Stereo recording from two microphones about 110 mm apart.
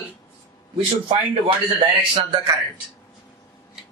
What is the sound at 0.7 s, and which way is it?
Speech, 55° right (ahead or behind).